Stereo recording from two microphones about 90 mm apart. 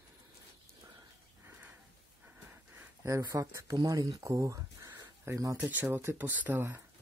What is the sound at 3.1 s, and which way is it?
Speech, 40° right (ahead or behind).